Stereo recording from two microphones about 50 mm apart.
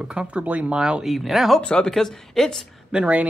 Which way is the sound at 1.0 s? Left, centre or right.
Centre.